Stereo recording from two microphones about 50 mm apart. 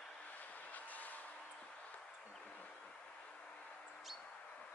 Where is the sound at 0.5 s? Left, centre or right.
Left.